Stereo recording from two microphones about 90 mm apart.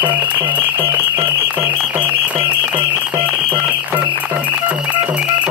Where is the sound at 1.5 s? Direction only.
20° right (ahead or behind).